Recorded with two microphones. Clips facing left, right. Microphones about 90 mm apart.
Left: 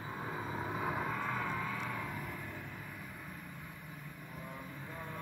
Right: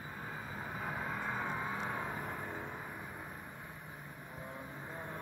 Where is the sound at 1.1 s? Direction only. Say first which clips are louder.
Left 1 dB; 20° right (ahead or behind).